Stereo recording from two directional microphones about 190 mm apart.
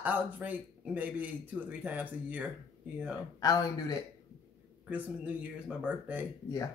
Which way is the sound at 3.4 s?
20° left (ahead or behind).